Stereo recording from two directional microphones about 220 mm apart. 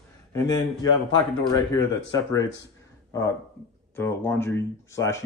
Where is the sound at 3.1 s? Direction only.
15° left (ahead or behind).